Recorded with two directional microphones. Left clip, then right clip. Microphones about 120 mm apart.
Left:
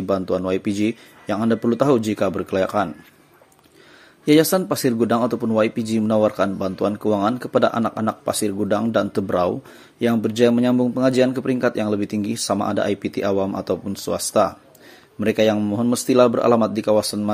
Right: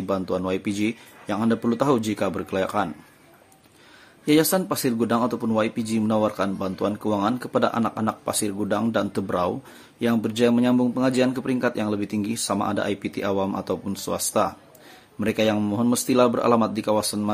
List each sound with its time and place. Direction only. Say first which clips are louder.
0.0 s speech: left 4 dB; 25° left (ahead or behind)
4.3 s speech: left 4 dB; 25° left (ahead or behind)